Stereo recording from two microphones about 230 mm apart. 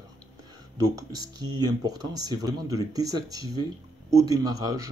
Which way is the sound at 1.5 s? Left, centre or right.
Centre.